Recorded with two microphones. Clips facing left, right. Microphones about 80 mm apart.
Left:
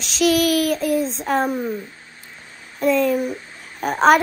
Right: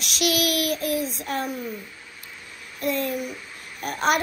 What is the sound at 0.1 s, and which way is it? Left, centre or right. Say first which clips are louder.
Child singing: left 7 dB; right.